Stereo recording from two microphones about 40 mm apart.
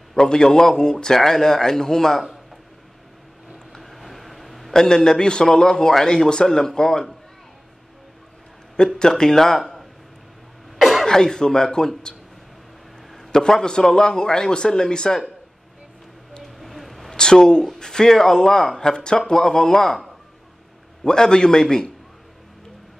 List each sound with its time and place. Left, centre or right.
0.1 s a man's voice: centre
3.7 s a sound: centre
4.7 s a man's voice: centre
8.7 s a man's voice: centre
10.8 s cough: centre
11.1 s a man's voice: centre
13.3 s a man's voice: centre
16.5 s a sound: centre
17.2 s a man's voice: centre
18.8 s a man's voice: centre
21.0 s a man's voice: centre